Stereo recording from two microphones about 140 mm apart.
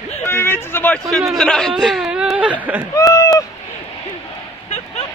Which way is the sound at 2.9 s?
25° left (ahead or behind).